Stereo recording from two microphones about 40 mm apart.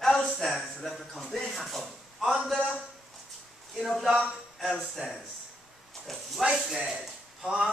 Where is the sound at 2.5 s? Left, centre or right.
Left.